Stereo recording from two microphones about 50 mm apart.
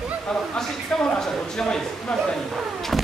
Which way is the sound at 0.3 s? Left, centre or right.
Centre.